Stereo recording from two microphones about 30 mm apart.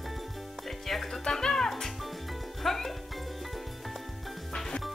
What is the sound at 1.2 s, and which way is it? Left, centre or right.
Speech, centre.